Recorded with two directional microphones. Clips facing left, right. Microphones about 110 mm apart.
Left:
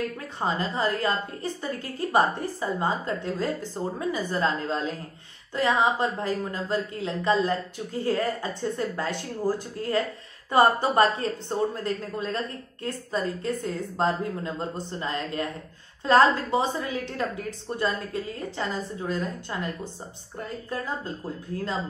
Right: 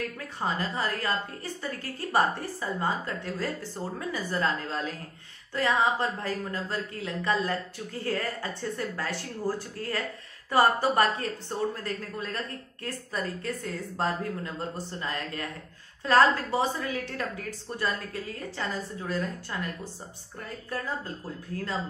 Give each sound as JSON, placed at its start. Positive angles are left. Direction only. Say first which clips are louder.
{"t": 0.4, "sound": "a woman's voice", "louder": "left 3 dB", "side_deg": 20}